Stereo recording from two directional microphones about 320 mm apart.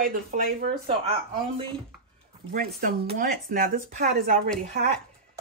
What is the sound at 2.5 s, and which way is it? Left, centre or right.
Speech, right.